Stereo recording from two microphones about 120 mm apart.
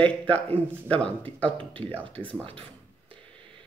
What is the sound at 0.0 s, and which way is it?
Speech, 10° left (ahead or behind).